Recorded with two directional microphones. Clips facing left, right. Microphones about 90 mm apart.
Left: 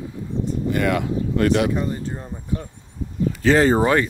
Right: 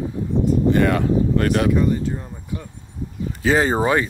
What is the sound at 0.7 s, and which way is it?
Speech, 35° right (ahead or behind).